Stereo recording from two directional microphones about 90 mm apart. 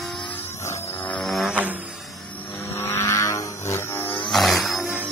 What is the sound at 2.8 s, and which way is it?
Vehicle, 25° left (ahead or behind).